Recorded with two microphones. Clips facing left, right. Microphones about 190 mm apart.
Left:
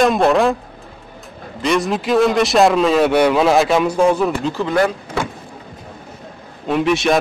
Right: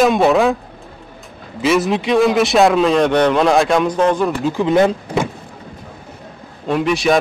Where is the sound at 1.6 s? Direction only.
Centre (ahead or behind).